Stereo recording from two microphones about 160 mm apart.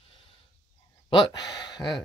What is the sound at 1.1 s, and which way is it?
Speech, 25° left (ahead or behind).